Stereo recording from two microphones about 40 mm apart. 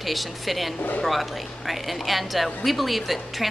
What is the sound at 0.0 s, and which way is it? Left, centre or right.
Speech, centre.